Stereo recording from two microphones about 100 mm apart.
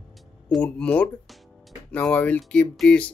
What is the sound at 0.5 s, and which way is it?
Speech, 10° left (ahead or behind).